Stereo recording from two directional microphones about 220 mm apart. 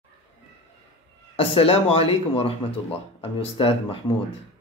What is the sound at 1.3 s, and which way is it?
Speech, 25° left (ahead or behind).